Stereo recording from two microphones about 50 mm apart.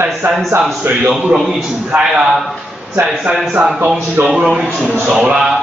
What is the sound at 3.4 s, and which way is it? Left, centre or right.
A man's voice, centre.